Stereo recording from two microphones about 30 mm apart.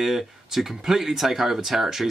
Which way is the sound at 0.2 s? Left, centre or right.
Centre.